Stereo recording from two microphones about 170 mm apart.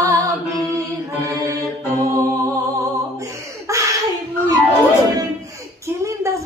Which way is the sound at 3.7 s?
20° right (ahead or behind).